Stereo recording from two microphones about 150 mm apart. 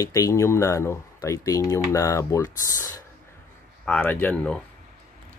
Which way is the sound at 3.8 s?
10° left (ahead or behind).